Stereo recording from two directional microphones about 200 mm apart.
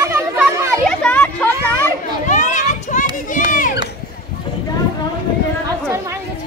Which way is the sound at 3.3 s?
40° left (ahead or behind).